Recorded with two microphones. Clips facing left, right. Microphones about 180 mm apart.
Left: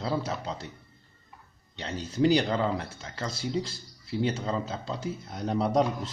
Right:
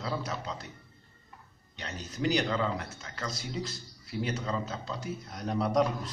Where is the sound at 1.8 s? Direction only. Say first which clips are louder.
Left 9 dB; 30° left (ahead or behind).